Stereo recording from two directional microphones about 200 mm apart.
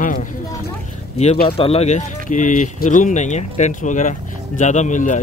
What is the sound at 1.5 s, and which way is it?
Speech, 30° left (ahead or behind).